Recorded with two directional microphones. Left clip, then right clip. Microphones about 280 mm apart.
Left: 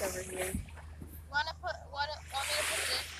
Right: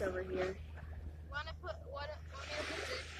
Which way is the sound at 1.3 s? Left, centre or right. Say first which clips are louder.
Left 10 dB; centre.